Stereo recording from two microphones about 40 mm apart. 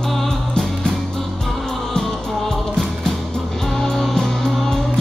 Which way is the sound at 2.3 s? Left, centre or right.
Centre.